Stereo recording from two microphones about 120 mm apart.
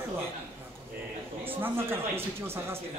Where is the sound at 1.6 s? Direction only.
20° right (ahead or behind).